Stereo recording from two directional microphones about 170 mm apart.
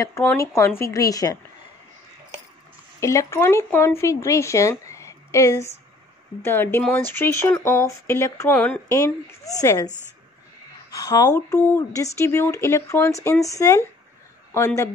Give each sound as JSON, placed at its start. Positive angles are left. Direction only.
{"t": 0.2, "sound": "a woman's voice", "side_deg": 15}
{"t": 3.0, "sound": "a woman's voice", "side_deg": 15}
{"t": 10.9, "sound": "speech", "side_deg": 20}